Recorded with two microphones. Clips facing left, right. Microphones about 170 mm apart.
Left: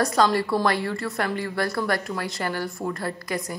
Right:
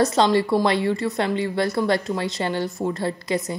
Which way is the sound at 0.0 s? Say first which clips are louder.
Right 3 dB; 25° right (ahead or behind).